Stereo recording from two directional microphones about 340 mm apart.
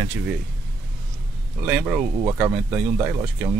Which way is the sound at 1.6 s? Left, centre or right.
Centre.